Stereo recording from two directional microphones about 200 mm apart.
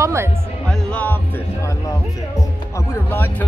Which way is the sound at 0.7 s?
5° left (ahead or behind).